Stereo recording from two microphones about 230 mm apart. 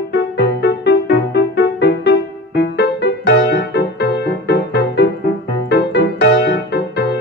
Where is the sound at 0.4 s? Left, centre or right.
Left.